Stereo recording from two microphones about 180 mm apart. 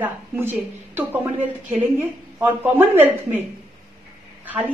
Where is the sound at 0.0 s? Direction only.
10° right (ahead or behind).